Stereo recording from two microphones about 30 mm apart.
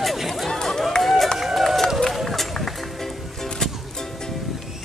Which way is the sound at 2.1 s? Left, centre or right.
Centre.